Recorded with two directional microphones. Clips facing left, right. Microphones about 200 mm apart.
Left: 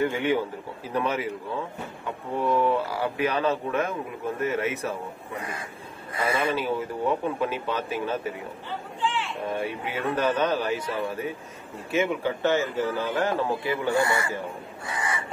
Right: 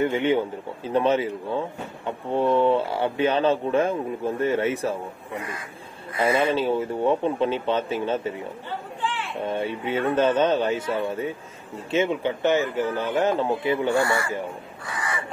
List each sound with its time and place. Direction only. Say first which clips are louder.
0.0 s speech: right 3 dB; 25° right (ahead or behind)
6.1 s speech: right 4 dB; 30° right (ahead or behind)
9.5 s speech: right 5 dB; 25° right (ahead or behind)
13.9 s speech: right 2 dB; 20° left (ahead or behind)
14.9 s crow: even; 20° left (ahead or behind)